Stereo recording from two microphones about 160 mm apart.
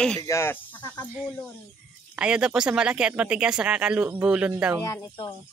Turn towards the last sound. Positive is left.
turn(degrees=15)  # may be behind; listen again after turning